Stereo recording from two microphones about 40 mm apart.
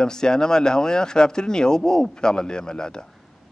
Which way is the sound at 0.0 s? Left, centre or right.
Centre.